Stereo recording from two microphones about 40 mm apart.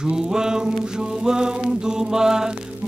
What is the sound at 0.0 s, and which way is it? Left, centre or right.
Music, centre.